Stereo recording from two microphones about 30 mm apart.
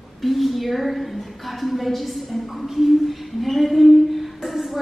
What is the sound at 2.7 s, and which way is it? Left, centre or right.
Music, centre.